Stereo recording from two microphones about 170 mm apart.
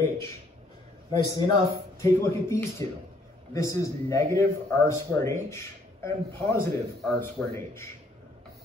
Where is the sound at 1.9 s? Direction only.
15° left (ahead or behind).